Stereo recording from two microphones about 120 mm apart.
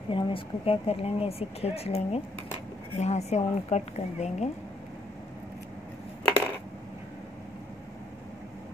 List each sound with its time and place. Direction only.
0.1 s a woman's voice: 45° left (ahead or behind); by 4.5 s 70° left (ahead or behind)